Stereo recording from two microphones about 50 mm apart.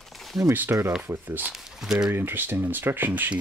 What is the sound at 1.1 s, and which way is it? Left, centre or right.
Speech, right.